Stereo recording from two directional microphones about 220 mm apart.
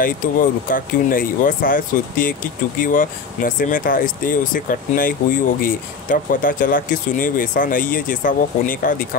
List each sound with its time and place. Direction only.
0.0 s speech: 40° left (ahead or behind)